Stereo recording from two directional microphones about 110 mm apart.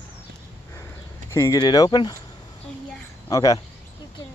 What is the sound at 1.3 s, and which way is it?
Speech, 30° left (ahead or behind).